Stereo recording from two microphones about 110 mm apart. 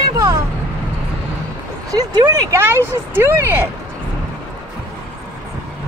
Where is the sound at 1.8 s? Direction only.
30° right (ahead or behind).